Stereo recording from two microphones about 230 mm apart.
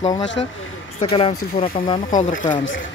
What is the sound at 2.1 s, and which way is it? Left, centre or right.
Speech, left.